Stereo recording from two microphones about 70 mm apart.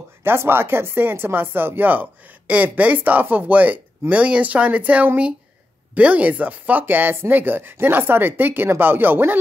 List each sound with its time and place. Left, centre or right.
0.2 s speech: right